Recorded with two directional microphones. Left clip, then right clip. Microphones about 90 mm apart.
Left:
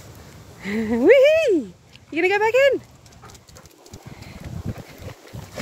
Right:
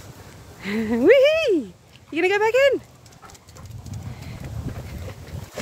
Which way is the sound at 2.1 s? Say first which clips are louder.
Left 1 dB; 25° right (ahead or behind).